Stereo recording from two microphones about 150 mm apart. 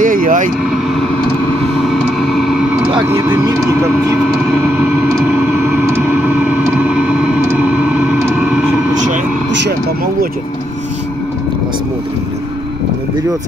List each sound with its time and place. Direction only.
0.0 s vehicle: 65° right (ahead or behind)
3.4 s speech: 20° right (ahead or behind)
5.2 s vehicle: 10° right (ahead or behind)